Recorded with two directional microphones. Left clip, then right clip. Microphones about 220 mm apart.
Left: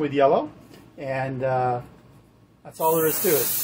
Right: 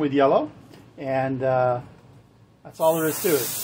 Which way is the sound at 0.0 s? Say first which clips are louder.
Even; 25° right (ahead or behind).